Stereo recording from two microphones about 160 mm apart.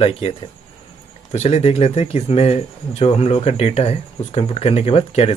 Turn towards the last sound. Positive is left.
turn(degrees=35)  # may be behind; listen again after turning